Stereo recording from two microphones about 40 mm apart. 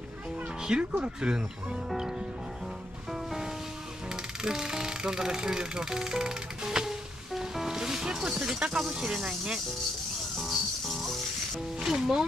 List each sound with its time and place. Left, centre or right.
0.6 s cat: centre
1.0 s speech: right
3.1 s music: centre
8.8 s speech: centre
10.3 s music: centre
11.8 s speech: centre